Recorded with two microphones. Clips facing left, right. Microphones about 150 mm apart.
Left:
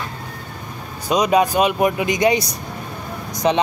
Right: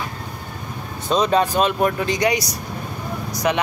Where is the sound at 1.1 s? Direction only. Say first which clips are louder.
Left 2 dB; 10° left (ahead or behind).